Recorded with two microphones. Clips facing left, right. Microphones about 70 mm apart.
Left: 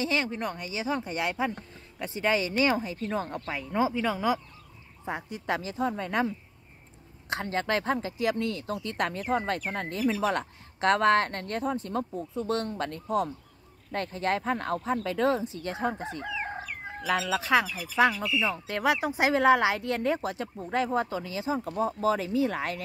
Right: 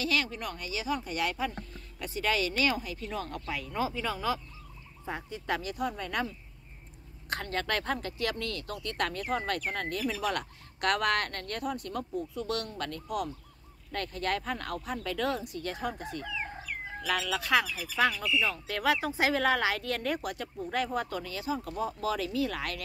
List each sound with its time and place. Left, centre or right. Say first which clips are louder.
0.0 s speech: left 3 dB; left
16.4 s chicken: left 3 dB; left
17.0 s speech: left 4 dB; left